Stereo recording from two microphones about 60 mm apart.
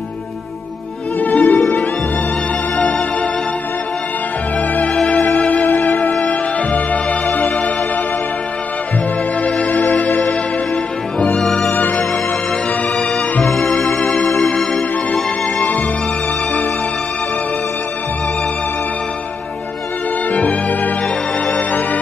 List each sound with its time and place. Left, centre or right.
1.2 s music: left
2.8 s music: left
4.6 s music: left
9.4 s music: left
11.3 s music: centre
11.7 s music: left
12.9 s music: centre
20.2 s music: left